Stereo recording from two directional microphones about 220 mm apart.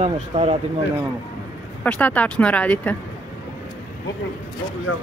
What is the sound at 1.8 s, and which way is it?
Speech, 5° left (ahead or behind).